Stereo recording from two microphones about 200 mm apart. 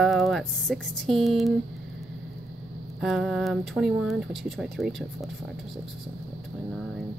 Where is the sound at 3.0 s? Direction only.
5° right (ahead or behind).